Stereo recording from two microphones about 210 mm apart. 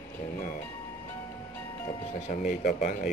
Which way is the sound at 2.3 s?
40° left (ahead or behind).